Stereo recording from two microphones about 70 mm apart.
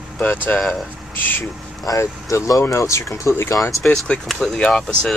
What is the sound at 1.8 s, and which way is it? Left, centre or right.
Speech, left.